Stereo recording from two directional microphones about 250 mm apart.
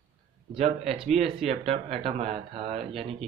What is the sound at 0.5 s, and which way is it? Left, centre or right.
Speech, right.